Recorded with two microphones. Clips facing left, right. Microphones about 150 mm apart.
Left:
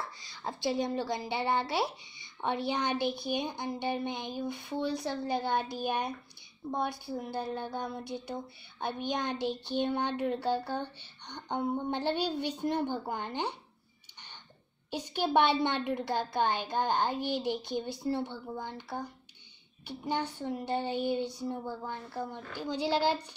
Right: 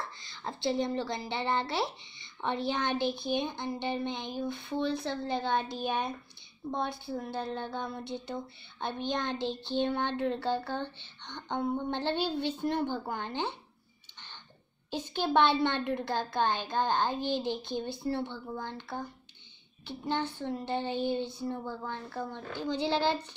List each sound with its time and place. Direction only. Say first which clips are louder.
0.2 s a woman's voice: even; 10° left (ahead or behind)
14.9 s a woman's voice: even; 15° left (ahead or behind)